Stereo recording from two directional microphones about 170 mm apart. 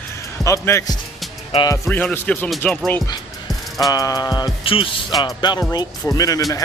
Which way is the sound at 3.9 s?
20° left (ahead or behind).